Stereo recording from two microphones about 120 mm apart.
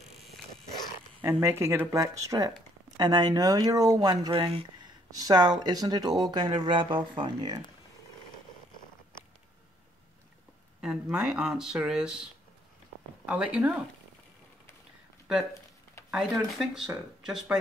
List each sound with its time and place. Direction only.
1.4 s speech: 20° right (ahead or behind)
4.3 s speech: 50° right (ahead or behind)
5.1 s speech: 30° right (ahead or behind)
10.8 s speech: 5° right (ahead or behind)
13.2 s speech: 10° right (ahead or behind)
16.1 s speech: centre (ahead or behind)